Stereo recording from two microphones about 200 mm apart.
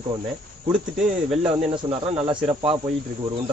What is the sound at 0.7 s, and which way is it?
Speech, 5° right (ahead or behind).